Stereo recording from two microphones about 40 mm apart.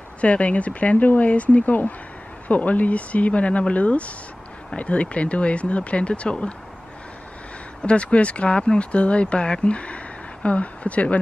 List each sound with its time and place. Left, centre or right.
0.2 s speech: left
7.8 s speech: left